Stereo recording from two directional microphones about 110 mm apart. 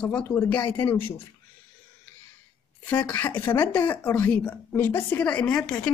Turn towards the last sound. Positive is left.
turn(degrees=10)  # may be behind; listen again after turning